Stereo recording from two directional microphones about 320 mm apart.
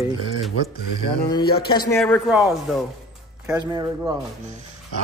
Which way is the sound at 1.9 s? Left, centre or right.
Centre.